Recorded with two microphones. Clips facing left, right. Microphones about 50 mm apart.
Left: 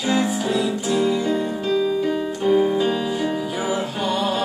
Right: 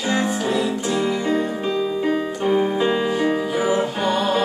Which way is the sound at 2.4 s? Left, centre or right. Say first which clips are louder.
Left 2 dB; centre.